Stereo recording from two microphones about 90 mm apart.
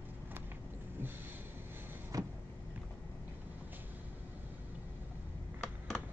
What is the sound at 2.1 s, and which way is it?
Vehicle, 40° right (ahead or behind).